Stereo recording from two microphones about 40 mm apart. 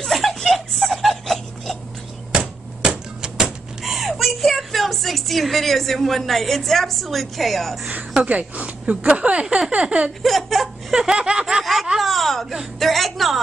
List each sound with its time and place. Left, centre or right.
0.1 s a sound: centre
2.3 s typewriter: centre
3.8 s a woman's voice: centre
8.2 s speech: right
10.2 s speech: centre
10.9 s snicker: centre
11.6 s laughter: centre
12.0 s a sound: centre
12.7 s a woman's voice: centre